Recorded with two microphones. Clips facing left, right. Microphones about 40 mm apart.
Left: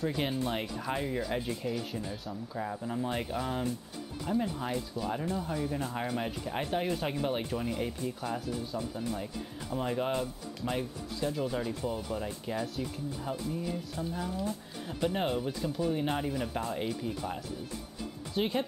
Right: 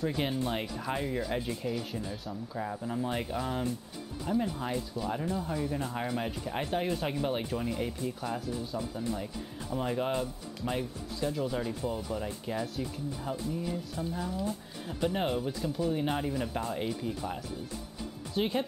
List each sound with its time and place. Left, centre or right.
0.5 s speech: centre
13.9 s speech: left
14.3 s speech: centre